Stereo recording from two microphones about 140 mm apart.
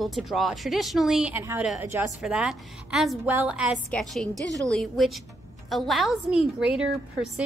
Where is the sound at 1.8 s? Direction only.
20° right (ahead or behind).